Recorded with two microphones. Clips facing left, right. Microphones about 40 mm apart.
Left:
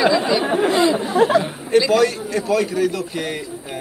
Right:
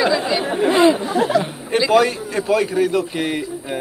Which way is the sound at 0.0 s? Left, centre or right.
Centre.